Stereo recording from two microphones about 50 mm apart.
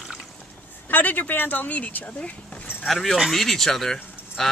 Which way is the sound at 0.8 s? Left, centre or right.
Left.